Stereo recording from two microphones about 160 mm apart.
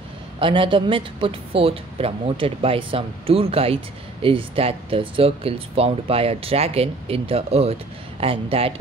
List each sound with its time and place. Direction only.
0.4 s a woman's voice: 35° right (ahead or behind)